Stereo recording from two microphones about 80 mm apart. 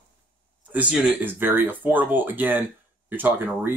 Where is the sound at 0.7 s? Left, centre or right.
Centre.